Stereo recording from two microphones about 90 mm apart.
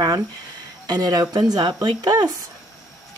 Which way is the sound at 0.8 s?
45° right (ahead or behind).